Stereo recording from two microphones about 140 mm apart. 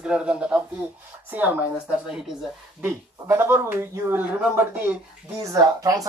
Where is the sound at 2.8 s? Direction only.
20° right (ahead or behind).